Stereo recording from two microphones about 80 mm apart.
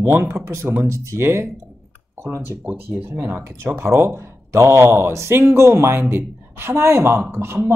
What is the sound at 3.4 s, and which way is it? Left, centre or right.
Speech, right.